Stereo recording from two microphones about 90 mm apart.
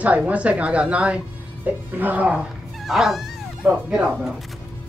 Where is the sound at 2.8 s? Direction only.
Centre (ahead or behind).